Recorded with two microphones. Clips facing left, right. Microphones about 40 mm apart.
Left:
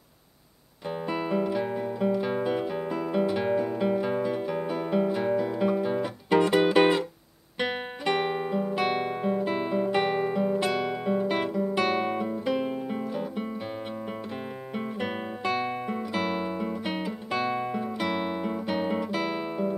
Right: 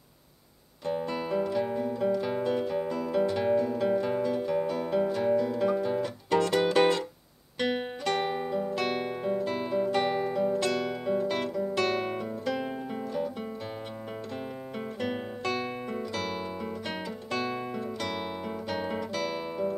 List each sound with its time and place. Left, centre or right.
0.8 s music: centre
7.5 s guitar: centre
15.0 s guitar: centre